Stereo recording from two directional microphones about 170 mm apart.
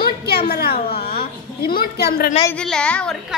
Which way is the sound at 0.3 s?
65° left (ahead or behind).